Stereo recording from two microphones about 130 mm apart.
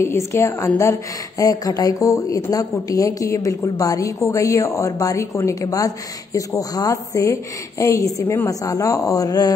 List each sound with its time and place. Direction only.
0.0 s a woman's voice: 20° left (ahead or behind)